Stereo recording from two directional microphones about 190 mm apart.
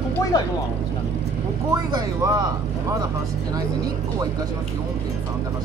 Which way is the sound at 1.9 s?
20° right (ahead or behind).